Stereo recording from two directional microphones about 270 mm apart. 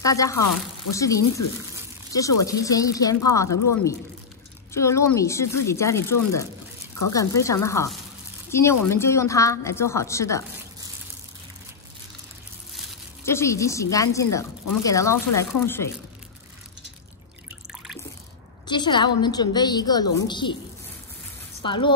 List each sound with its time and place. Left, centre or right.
0.0 s speech: centre
2.4 s speech: centre
3.4 s speech: left
4.7 s speech: centre
13.2 s speech: centre
18.7 s speech: centre
21.6 s speech: centre